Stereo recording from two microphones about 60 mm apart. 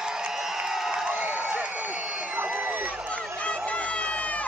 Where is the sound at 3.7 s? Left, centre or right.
Left.